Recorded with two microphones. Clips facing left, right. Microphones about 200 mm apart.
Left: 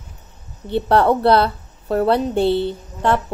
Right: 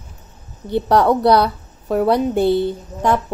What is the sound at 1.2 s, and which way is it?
Speech, 15° right (ahead or behind).